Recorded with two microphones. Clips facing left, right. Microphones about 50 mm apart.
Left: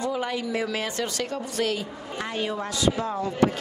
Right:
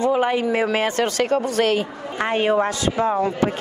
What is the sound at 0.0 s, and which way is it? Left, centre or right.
Speech, right.